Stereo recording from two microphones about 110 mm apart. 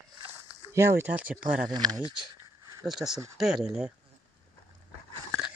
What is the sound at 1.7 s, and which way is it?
Speech, 40° right (ahead or behind).